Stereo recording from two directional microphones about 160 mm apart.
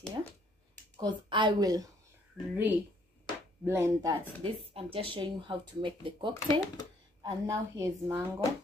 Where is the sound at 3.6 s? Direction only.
15° right (ahead or behind).